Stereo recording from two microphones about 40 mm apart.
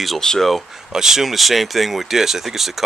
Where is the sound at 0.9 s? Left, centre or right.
Centre.